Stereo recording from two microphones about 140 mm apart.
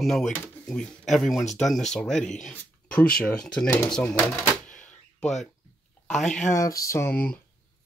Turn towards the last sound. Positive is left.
turn(degrees=15)  # may be behind; listen again after turning